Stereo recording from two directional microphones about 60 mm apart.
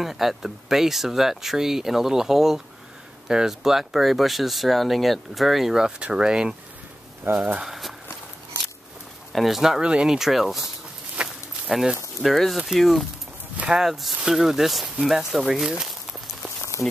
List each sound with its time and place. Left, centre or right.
0.0 s speech: centre
7.3 s speech: right
7.6 s speech: centre
9.3 s speech: centre
11.2 s walk: centre
12.2 s speech: centre
15.8 s a sound: centre